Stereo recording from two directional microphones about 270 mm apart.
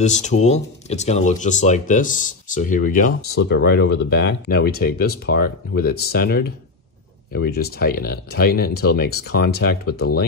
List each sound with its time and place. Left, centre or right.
0.0 s speech: left